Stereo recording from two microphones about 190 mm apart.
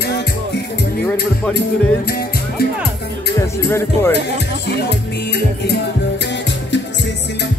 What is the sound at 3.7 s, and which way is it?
Speech, 15° left (ahead or behind).